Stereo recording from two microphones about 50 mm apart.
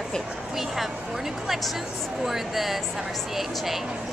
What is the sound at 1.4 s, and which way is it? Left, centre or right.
A woman's voice, centre.